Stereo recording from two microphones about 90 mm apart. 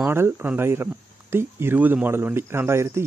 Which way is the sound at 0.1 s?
25° right (ahead or behind).